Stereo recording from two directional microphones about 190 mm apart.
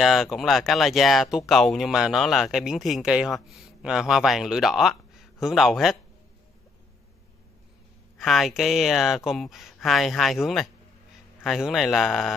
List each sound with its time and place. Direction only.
0.0 s speech: centre (ahead or behind)
8.2 s speech: centre (ahead or behind)